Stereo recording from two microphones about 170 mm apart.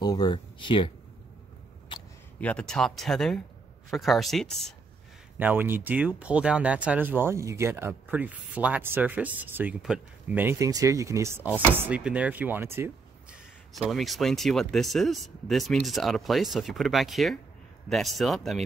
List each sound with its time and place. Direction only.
0.0 s speech: 25° left (ahead or behind)
1.9 s a sound: 30° left (ahead or behind)
2.4 s speech: 5° left (ahead or behind)
5.4 s speech: 10° right (ahead or behind)
13.7 s speech: centre (ahead or behind)